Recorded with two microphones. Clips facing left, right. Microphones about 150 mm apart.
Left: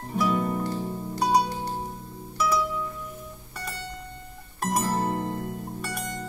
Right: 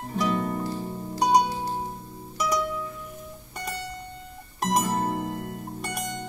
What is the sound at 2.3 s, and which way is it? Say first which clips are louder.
Music: left 1 dB; 15° right (ahead or behind).